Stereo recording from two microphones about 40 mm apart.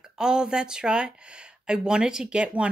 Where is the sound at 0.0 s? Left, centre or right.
Centre.